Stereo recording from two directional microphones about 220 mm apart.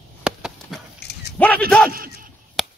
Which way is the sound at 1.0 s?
50° left (ahead or behind).